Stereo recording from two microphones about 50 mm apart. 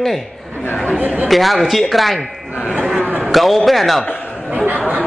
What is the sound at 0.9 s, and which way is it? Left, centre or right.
Speech, right.